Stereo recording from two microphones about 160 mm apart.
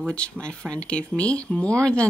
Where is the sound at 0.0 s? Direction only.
5° left (ahead or behind).